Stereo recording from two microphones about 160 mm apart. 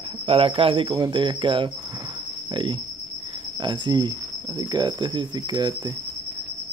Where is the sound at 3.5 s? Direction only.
30° right (ahead or behind).